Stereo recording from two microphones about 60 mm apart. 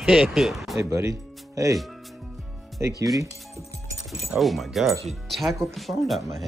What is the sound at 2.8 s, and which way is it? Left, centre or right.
Speech, right.